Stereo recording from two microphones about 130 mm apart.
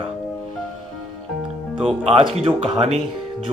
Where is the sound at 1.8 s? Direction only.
50° right (ahead or behind).